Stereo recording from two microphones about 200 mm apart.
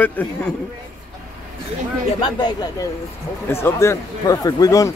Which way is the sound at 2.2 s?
20° left (ahead or behind).